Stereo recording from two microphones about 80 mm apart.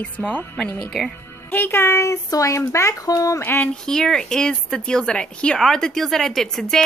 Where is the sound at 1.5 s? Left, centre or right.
Left.